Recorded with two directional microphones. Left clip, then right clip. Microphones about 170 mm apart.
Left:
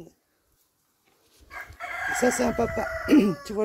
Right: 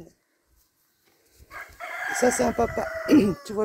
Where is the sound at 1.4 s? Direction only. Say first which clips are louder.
Left 1 dB; 5° right (ahead or behind).